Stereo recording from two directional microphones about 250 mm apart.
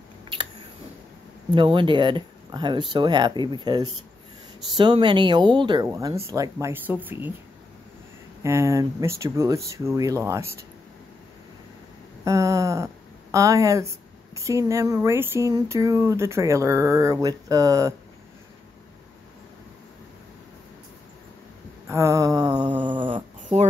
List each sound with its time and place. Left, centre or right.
1.5 s speech: centre
8.4 s speech: centre
12.3 s speech: centre
21.8 s mantra: centre
22.8 s dog: centre